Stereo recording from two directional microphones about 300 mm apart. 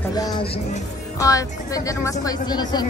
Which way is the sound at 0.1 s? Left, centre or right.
Centre.